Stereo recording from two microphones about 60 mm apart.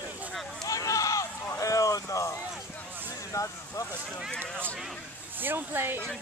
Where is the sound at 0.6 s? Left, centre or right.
Left.